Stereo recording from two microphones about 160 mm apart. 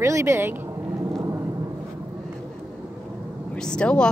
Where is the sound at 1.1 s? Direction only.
20° right (ahead or behind).